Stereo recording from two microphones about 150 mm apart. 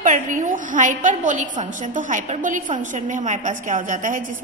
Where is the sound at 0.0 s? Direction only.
60° right (ahead or behind).